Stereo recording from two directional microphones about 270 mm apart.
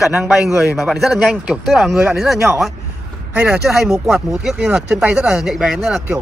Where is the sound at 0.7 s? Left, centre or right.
Centre.